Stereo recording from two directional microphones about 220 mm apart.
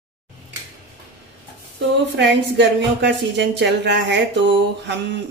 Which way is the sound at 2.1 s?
50° right (ahead or behind).